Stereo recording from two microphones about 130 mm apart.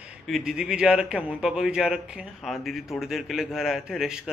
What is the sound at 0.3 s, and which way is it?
A man's voice, 5° right (ahead or behind).